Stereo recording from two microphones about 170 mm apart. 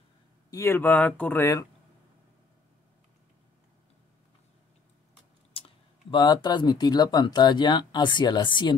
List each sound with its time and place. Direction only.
0.5 s speech: 15° left (ahead or behind)
5.5 s speech: 30° left (ahead or behind)